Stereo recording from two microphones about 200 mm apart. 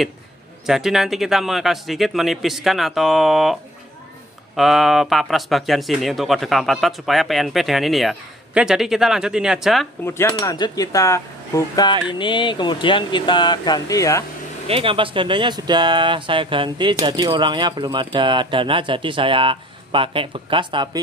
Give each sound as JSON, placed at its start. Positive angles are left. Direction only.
{"t": 0.7, "sound": "speech", "side_deg": 0}
{"t": 4.6, "sound": "speech", "side_deg": 0}
{"t": 10.0, "sound": "speech", "side_deg": 10}
{"t": 14.7, "sound": "speech", "side_deg": -25}